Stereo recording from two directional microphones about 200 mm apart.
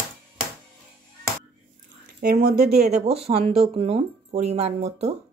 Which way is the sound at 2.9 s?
30° right (ahead or behind).